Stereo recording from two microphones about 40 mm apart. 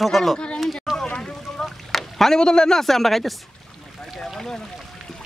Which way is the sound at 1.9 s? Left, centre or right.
Centre.